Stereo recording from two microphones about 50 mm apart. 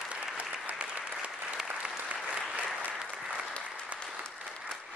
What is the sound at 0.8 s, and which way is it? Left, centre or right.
Applause, right.